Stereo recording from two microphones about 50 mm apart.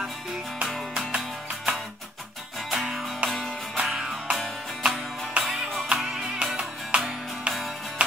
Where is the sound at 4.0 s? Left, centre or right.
Centre.